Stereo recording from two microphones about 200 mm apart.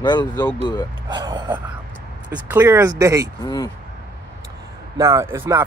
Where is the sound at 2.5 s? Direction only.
10° right (ahead or behind).